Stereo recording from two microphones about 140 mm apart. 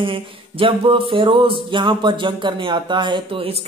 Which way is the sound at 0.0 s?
40° right (ahead or behind).